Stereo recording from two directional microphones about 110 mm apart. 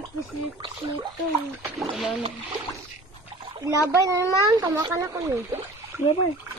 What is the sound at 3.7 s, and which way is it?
A child's voice, 30° right (ahead or behind).